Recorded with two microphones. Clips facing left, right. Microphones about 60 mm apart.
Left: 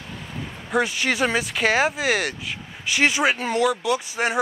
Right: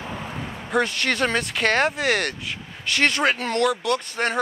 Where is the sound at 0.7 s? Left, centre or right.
Centre.